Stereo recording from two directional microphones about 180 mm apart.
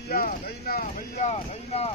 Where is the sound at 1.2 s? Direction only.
35° left (ahead or behind).